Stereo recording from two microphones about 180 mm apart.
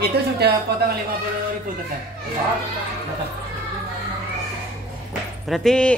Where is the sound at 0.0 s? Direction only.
60° right (ahead or behind).